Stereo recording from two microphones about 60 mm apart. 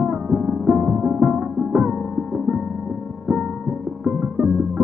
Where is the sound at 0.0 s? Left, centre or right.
Centre.